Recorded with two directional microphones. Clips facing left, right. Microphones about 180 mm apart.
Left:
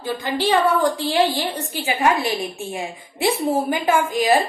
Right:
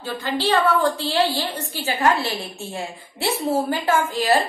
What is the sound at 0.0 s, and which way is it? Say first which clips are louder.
A woman's voice: left 2 dB; 15° left (ahead or behind).